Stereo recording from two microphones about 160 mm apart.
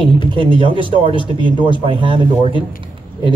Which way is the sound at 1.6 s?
30° right (ahead or behind).